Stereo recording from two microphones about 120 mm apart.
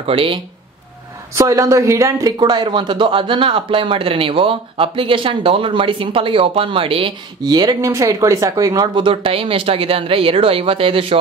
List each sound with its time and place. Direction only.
0.0 s speech: 50° right (ahead or behind)
1.3 s speech: 25° right (ahead or behind); by 11.1 s 45° right (ahead or behind)